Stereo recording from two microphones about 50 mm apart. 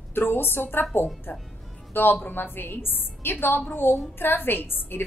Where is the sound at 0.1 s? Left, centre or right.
Left.